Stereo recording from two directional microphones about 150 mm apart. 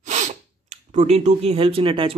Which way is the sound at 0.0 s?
50° right (ahead or behind).